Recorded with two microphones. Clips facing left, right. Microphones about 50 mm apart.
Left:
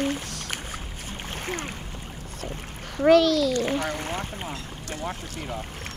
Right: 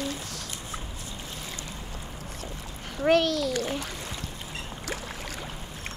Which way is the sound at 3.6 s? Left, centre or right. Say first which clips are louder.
Left 6 dB; left.